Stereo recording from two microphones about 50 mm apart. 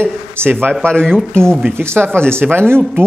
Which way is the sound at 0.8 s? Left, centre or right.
Centre.